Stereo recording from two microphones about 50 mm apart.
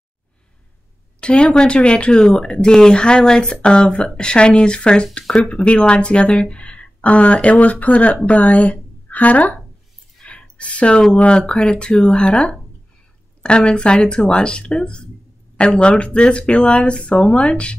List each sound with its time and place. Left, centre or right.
1.2 s speech: left
10.2 s a sound: left
11.1 s speech: left